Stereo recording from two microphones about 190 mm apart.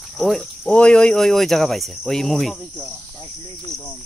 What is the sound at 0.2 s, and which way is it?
Speech, centre (ahead or behind).